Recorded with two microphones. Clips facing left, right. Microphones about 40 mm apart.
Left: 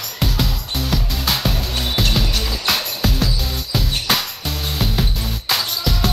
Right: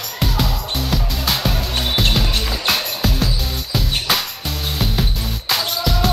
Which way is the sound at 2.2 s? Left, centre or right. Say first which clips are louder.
Right 1 dB; centre.